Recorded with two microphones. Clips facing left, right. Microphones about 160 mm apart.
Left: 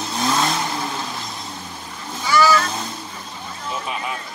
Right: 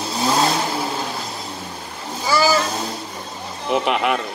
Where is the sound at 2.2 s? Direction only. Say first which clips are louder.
Left 1 dB; 30° right (ahead or behind).